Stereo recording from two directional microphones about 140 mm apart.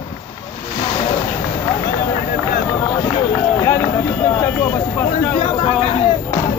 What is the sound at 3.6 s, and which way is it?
Run, 15° left (ahead or behind).